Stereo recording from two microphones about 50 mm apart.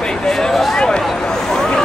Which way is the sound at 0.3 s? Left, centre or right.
Centre.